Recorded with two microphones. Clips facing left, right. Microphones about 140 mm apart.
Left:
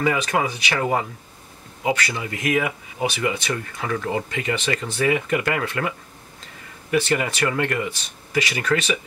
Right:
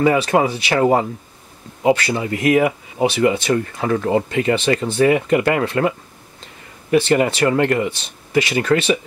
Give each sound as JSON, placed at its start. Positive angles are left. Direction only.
{"t": 0.0, "sound": "speech", "side_deg": -30}